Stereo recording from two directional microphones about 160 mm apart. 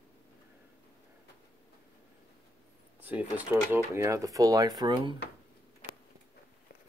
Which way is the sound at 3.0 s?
10° right (ahead or behind).